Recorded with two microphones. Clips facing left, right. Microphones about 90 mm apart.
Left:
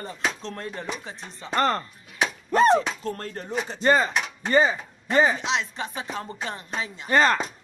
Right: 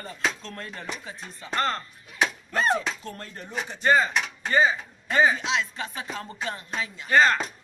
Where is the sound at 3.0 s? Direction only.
45° left (ahead or behind).